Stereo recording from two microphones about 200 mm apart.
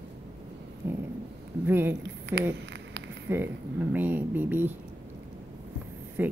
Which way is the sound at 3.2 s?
10° right (ahead or behind).